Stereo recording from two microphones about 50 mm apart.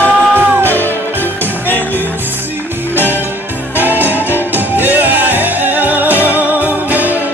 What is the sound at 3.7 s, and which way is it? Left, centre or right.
Music, right.